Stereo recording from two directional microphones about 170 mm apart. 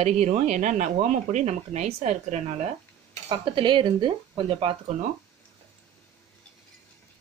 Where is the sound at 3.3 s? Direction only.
30° right (ahead or behind).